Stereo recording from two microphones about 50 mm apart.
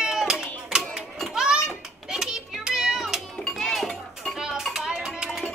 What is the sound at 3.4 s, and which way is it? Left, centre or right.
Music, centre.